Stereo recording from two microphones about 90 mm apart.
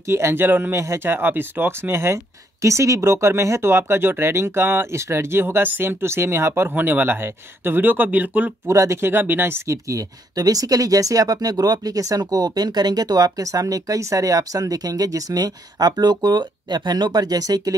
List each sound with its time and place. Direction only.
0.0 s speech: 30° right (ahead or behind)
8.6 s speech: 35° right (ahead or behind)